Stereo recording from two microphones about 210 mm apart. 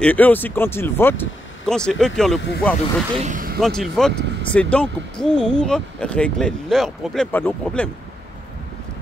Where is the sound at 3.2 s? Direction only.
35° right (ahead or behind).